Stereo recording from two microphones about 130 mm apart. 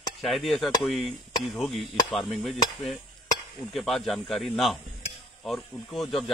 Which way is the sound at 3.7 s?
Centre (ahead or behind).